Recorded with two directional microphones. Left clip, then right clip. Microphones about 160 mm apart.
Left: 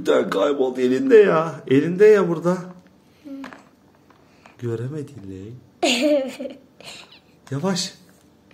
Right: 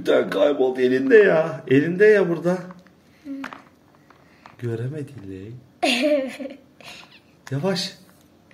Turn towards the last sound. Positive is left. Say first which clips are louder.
# even
turn(degrees=10)  # may be behind; listen again after turning